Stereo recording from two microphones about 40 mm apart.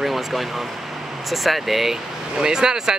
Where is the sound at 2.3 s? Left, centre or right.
Centre.